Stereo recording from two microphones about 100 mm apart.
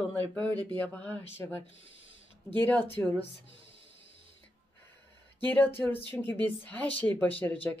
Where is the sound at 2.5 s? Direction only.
20° left (ahead or behind).